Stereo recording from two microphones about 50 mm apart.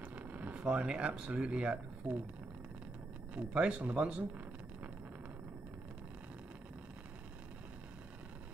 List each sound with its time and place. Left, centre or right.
0.0 s a sound: right
0.8 s speech: right
3.3 s speech: right